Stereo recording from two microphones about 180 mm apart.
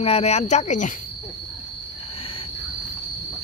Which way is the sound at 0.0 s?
35° left (ahead or behind).